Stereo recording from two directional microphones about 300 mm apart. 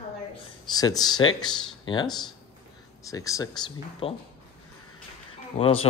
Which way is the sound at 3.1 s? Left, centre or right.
Centre.